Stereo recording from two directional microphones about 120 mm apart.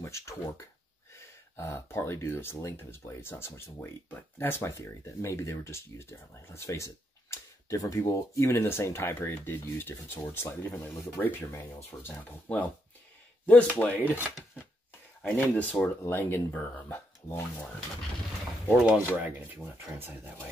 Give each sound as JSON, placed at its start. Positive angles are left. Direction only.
{"t": 0.0, "sound": "speech", "side_deg": 25}
{"t": 15.2, "sound": "speech", "side_deg": 20}
{"t": 18.7, "sound": "speech", "side_deg": -5}